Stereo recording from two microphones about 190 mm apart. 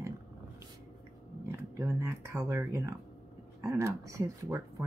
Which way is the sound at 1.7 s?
15° right (ahead or behind).